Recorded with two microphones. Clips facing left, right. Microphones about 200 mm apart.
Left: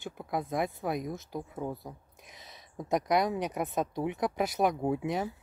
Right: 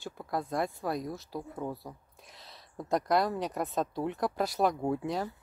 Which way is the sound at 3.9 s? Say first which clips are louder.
Left 1 dB; 20° left (ahead or behind).